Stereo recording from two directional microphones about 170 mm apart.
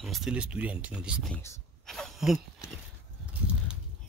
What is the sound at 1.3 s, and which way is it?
Speech, 15° left (ahead or behind).